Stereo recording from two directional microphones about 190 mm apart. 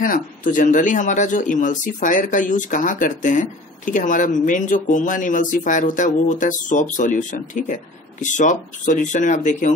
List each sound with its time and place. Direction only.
0.0 s a man's voice: 45° left (ahead or behind)